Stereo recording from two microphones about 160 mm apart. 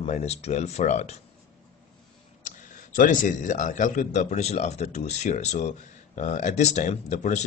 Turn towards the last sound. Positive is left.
turn(degrees=45)  # may be behind; listen again after turning